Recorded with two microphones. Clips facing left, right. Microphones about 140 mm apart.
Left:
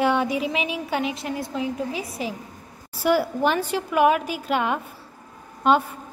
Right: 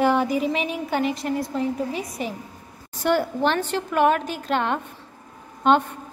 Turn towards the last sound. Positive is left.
turn(degrees=5)  # may be behind; listen again after turning